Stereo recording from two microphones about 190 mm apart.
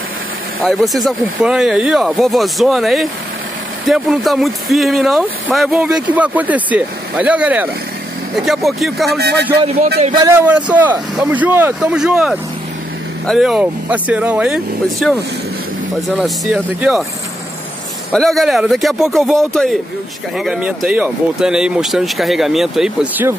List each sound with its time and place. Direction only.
0.6 s speech: centre (ahead or behind)
9.2 s a man's voice: 60° right (ahead or behind)
10.1 s a man's voice: 20° right (ahead or behind)
10.4 s a man's voice: 10° right (ahead or behind)
16.2 s speech: 5° right (ahead or behind)
18.1 s speech: centre (ahead or behind)
20.3 s speech: 5° right (ahead or behind)